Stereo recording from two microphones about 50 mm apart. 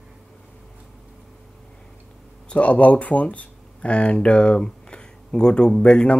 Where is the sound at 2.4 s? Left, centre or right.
Left.